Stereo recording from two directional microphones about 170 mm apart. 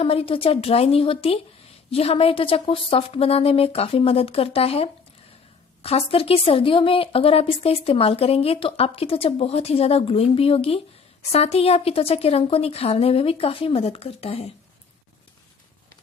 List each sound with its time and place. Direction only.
0.0 s speech: 35° left (ahead or behind)